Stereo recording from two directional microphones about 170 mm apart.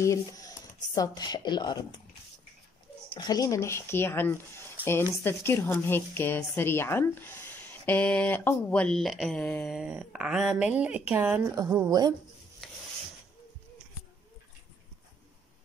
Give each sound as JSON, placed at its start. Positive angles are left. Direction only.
{"t": 0.0, "sound": "a woman's voice", "side_deg": 20}
{"t": 3.2, "sound": "a woman's voice", "side_deg": 20}
{"t": 9.8, "sound": "speech", "side_deg": -5}
{"t": 12.6, "sound": "ratchet", "side_deg": 0}